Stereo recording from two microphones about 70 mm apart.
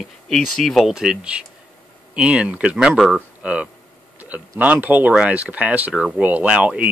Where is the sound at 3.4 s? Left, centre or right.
Centre.